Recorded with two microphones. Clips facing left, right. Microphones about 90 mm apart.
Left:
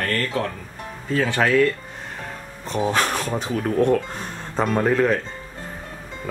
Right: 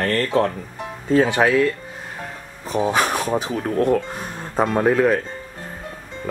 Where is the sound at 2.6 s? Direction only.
10° right (ahead or behind).